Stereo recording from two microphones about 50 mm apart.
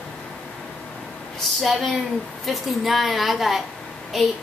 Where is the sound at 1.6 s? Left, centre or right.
Centre.